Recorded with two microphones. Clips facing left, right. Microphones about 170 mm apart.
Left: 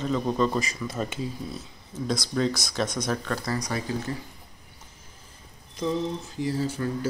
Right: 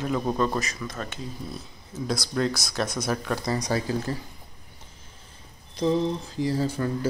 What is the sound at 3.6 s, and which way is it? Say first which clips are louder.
Speech: right 3 dB; 35° right (ahead or behind).